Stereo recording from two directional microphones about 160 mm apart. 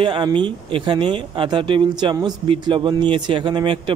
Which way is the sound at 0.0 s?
30° right (ahead or behind).